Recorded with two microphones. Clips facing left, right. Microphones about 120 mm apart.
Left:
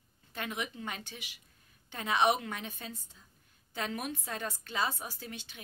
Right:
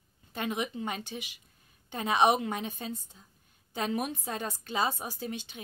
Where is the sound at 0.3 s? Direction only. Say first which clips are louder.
Right 5 dB; 20° right (ahead or behind).